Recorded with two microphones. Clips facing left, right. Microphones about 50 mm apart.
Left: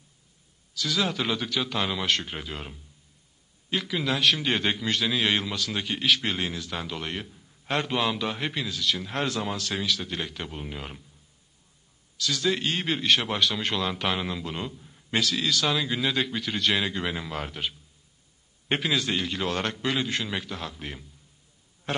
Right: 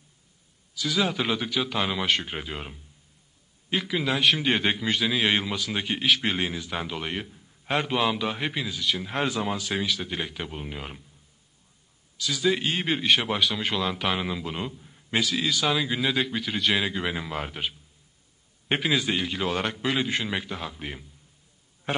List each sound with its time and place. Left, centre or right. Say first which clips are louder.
0.7 s a man's voice: right 1 dB; centre
12.2 s a man's voice: right 2 dB; centre
21.9 s a sound: right 2 dB; centre